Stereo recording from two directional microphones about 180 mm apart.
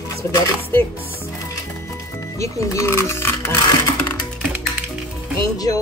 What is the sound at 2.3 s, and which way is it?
Speech, 15° left (ahead or behind).